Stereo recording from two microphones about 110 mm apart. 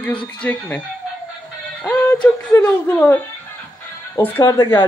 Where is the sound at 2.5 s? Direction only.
20° left (ahead or behind).